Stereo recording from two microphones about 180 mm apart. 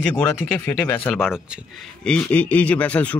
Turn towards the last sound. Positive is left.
turn(degrees=10)  # may be behind; listen again after turning